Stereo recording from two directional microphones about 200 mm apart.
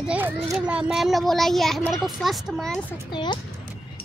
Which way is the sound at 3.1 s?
25° left (ahead or behind).